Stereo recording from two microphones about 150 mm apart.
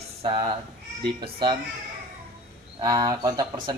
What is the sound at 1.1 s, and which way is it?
Speech, 30° right (ahead or behind).